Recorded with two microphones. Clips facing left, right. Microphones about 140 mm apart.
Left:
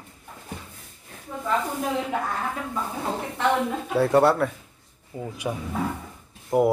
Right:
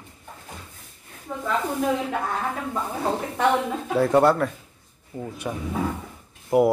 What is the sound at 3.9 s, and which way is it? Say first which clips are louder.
Speech: right 1 dB; centre (ahead or behind).